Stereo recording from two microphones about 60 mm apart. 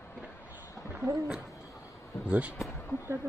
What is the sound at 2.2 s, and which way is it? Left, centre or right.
Speech, right.